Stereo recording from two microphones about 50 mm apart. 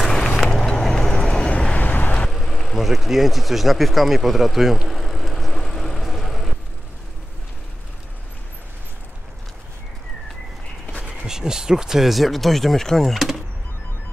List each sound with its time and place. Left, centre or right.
0.0 s a sound: centre
0.5 s vehicle: centre
1.7 s vehicle: left
2.2 s vehicle: centre
11.0 s speech: centre